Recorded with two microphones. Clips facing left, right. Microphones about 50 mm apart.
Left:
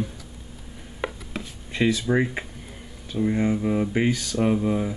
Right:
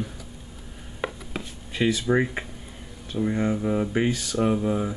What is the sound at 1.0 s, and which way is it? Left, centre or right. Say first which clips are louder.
Writing: even; centre.